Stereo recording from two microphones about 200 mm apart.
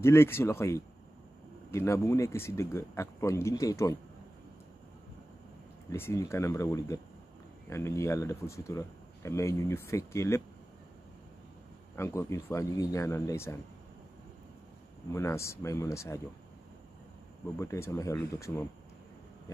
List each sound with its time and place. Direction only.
0.0 s speech: 10° left (ahead or behind)
5.9 s speech: 15° left (ahead or behind)
11.9 s speech: 15° left (ahead or behind)
15.1 s speech: 15° left (ahead or behind)
17.6 s speech: 15° left (ahead or behind)